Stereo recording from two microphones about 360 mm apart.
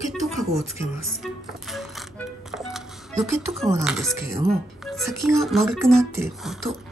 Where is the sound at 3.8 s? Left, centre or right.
Centre.